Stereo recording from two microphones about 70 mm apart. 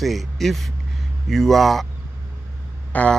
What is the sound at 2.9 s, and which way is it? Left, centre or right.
Speech, left.